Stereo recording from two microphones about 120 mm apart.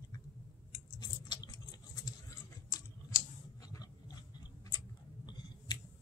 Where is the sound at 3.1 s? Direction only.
30° left (ahead or behind).